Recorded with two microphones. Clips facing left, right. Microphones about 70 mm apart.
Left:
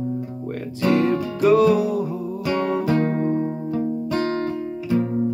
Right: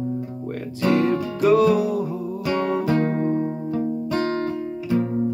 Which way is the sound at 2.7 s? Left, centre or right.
Centre.